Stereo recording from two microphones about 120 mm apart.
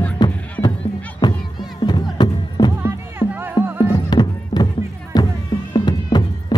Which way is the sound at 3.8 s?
35° left (ahead or behind).